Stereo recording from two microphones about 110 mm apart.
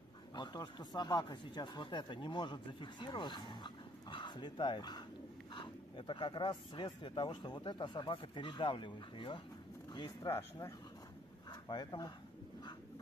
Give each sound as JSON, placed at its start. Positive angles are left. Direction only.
{"t": 0.3, "sound": "speech", "side_deg": 40}
{"t": 9.9, "sound": "speech", "side_deg": 35}
{"t": 11.6, "sound": "speech", "side_deg": 40}